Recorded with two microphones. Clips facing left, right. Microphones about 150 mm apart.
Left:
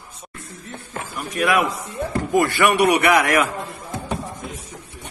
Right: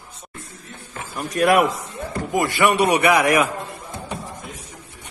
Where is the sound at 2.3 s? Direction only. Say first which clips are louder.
Left 1 dB; 20° right (ahead or behind).